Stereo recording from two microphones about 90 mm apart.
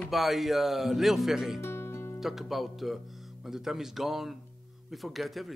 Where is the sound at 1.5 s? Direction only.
30° left (ahead or behind).